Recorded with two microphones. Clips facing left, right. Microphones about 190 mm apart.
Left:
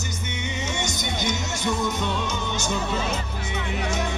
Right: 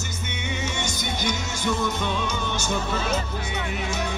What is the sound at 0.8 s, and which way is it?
Music, 20° left (ahead or behind).